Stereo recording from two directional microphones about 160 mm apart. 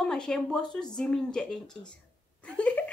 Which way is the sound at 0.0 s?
5° left (ahead or behind).